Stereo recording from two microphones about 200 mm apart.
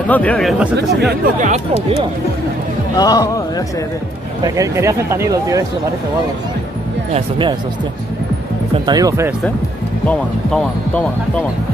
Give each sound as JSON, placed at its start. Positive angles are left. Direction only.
{"t": 0.1, "sound": "speech", "side_deg": 5}
{"t": 1.2, "sound": "speech", "side_deg": -35}
{"t": 3.0, "sound": "a man's voice", "side_deg": 20}
{"t": 4.6, "sound": "speech", "side_deg": -15}
{"t": 7.2, "sound": "speech", "side_deg": -25}
{"t": 8.7, "sound": "speech", "side_deg": -20}
{"t": 10.0, "sound": "speech", "side_deg": 5}